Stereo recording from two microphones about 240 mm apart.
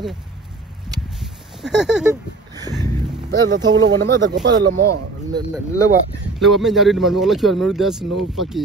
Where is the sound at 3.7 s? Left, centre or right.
Right.